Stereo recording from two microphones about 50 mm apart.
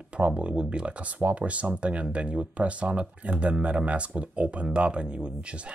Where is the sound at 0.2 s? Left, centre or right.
Right.